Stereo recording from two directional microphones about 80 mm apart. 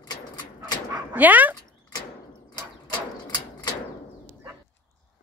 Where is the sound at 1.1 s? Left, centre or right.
Right.